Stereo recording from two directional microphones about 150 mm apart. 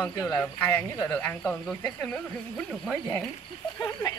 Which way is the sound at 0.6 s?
15° left (ahead or behind).